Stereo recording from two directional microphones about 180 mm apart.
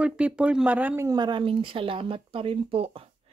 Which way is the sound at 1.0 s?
25° right (ahead or behind).